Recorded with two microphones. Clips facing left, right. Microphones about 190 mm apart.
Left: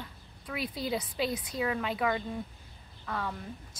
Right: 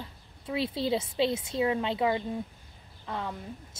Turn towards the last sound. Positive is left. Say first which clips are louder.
# right 1 dB
turn(degrees=-20)  # may be behind; listen again after turning